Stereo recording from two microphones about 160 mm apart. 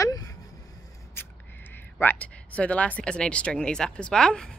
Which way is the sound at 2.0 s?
10° left (ahead or behind).